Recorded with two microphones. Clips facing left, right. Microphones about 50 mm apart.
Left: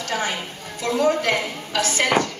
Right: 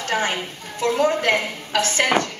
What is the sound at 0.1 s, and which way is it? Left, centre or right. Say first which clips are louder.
A woman's voice: right 3 dB; right.